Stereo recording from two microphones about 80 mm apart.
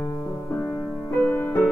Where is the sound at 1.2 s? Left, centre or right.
Centre.